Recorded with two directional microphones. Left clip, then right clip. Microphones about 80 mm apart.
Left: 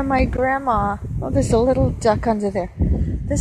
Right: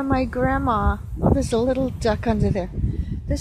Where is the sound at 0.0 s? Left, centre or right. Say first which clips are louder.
Left 3 dB; centre.